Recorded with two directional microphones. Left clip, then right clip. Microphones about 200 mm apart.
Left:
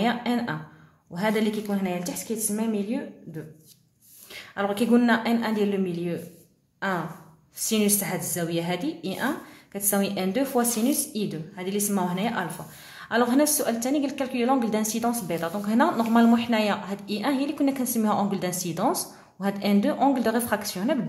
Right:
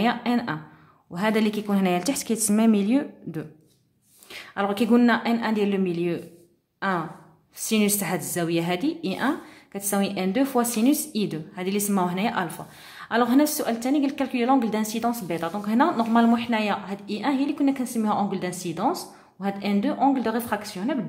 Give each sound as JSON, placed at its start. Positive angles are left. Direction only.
{"t": 0.0, "sound": "a woman's voice", "side_deg": -20}
{"t": 4.3, "sound": "a woman's voice", "side_deg": -15}